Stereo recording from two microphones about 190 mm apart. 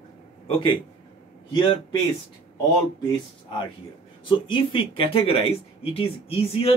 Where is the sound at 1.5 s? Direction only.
25° left (ahead or behind).